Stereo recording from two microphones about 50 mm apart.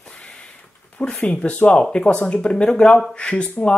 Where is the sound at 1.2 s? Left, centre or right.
Left.